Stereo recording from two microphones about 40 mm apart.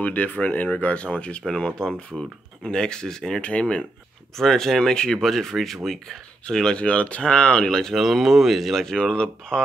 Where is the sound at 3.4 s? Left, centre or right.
Left.